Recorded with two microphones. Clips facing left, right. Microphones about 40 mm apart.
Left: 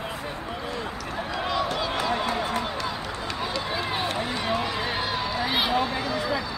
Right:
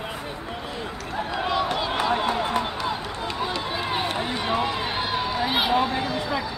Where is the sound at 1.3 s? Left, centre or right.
Right.